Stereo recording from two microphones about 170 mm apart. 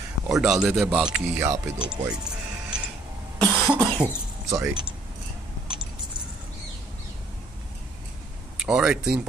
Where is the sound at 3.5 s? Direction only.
5° right (ahead or behind).